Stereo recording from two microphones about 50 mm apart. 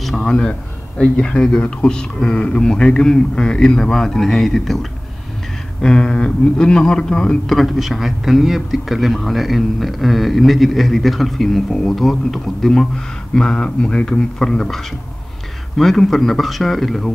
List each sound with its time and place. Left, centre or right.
0.0 s a sound: centre
0.3 s a man's voice: left; by 4.7 s centre
5.8 s speech: centre
7.4 s a man's voice: centre
15.8 s a man's voice: centre